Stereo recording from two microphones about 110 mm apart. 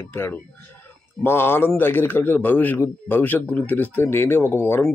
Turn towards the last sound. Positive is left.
turn(degrees=20)  # may be behind; listen again after turning